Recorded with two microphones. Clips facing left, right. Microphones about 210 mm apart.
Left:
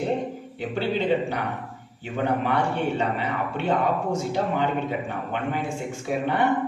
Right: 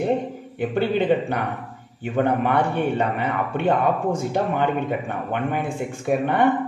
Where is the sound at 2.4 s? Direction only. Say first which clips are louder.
Right 3 dB; 55° right (ahead or behind).